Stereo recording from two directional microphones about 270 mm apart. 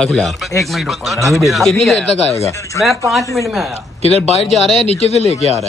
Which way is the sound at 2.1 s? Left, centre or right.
Left.